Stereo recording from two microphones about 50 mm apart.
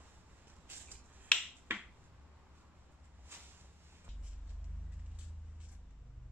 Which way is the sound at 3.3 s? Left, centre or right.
Right.